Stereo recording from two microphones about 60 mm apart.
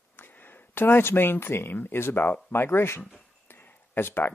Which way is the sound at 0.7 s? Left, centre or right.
Left.